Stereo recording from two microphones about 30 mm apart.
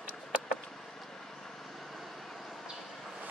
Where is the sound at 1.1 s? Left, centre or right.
Centre.